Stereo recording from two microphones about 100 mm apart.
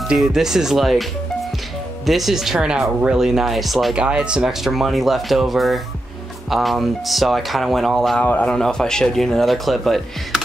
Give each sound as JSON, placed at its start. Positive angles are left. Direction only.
{"t": 0.1, "sound": "speech", "side_deg": -5}
{"t": 2.0, "sound": "speech", "side_deg": 0}
{"t": 8.3, "sound": "a man's voice", "side_deg": 15}